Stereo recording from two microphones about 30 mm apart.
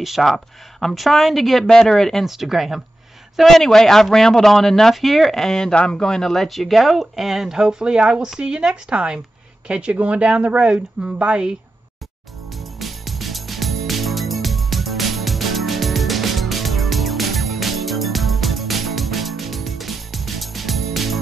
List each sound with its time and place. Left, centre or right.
0.2 s a man's voice: centre
1.7 s a man's voice: centre
2.2 s speech: centre
3.4 s a man's voice: centre
5.8 s speech: left
6.0 s speech: centre
7.6 s speech: right
8.9 s a woman's voice: right
9.9 s speech: right
11.1 s a woman's voice: right
12.5 s music: centre